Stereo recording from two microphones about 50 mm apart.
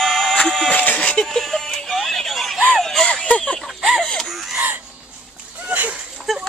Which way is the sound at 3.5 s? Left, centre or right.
Centre.